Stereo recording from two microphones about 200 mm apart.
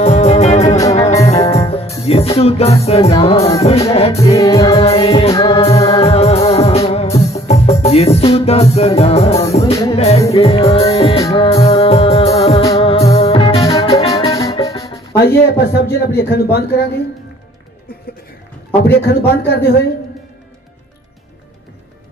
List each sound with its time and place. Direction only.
0.0 s music: 35° left (ahead or behind)
0.7 s music: 15° left (ahead or behind)
1.7 s music: 30° left (ahead or behind)
4.2 s music: 15° left (ahead or behind)
4.8 s music: 30° left (ahead or behind)
11.1 s music: 15° left (ahead or behind)
11.4 s music: 30° left (ahead or behind)
14.3 s music: 15° left (ahead or behind)
15.1 s speech: 55° left (ahead or behind)
18.9 s speech: 50° left (ahead or behind)